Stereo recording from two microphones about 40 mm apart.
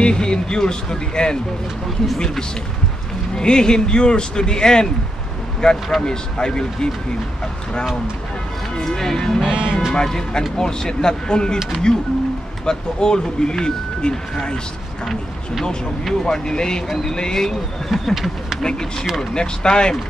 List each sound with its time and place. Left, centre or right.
0.0 s speech: left
8.7 s speech: centre
9.5 s speech: right
9.9 s speech: centre
15.6 s speech: centre
18.6 s speech: centre